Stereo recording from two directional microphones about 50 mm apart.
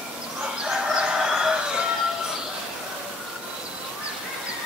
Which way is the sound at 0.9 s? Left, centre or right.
Centre.